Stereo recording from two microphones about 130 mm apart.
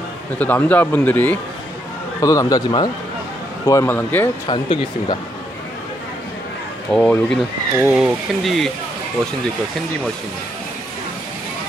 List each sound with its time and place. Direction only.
0.4 s speech: 10° left (ahead or behind)
2.2 s speech: 30° left (ahead or behind)
4.5 s speech: 35° left (ahead or behind)
6.9 s speech: 10° left (ahead or behind)
7.8 s speech: 5° right (ahead or behind)